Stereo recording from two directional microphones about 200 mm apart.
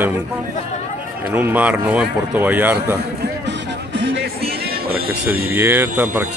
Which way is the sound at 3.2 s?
60° right (ahead or behind).